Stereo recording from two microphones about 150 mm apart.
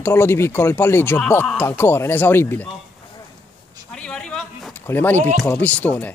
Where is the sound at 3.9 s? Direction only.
5° left (ahead or behind).